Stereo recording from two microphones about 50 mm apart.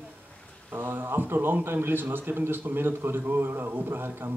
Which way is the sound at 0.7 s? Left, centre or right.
Right.